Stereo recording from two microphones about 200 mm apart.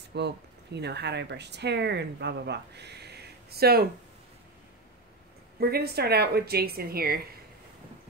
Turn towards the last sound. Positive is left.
turn(degrees=-50)  # may be behind; listen again after turning